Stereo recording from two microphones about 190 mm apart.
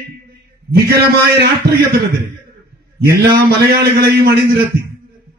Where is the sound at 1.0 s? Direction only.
55° right (ahead or behind).